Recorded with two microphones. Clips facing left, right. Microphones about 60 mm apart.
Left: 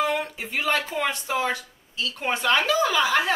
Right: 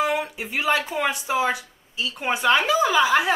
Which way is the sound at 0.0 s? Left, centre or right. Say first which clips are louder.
Right 1 dB; centre.